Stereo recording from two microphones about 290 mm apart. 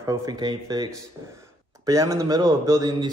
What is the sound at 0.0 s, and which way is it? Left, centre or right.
A man's voice, centre.